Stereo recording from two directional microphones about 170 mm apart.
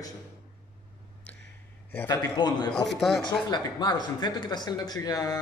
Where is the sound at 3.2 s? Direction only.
25° left (ahead or behind).